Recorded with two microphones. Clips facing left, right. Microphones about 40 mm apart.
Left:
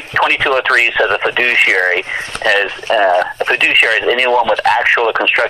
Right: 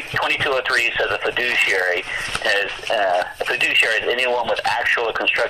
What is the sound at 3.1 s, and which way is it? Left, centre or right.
Speech, left.